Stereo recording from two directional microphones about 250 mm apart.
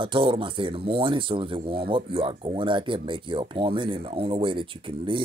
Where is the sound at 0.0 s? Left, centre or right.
Centre.